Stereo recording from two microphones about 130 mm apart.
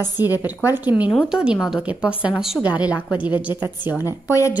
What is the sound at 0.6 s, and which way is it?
A woman's voice, 15° right (ahead or behind).